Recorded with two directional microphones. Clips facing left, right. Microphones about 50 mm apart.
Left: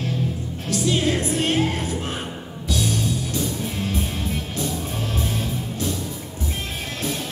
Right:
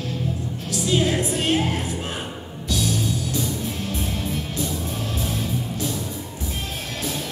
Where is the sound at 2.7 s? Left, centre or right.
Centre.